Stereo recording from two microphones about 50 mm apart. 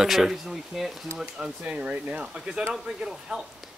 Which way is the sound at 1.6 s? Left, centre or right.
Right.